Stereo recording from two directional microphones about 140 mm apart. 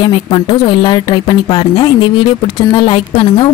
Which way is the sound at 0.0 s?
35° left (ahead or behind).